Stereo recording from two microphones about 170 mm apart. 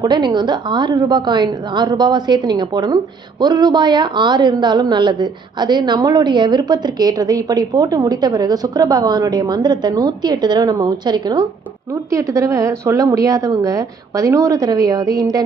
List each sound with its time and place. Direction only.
0.0 s a woman's voice: 25° right (ahead or behind)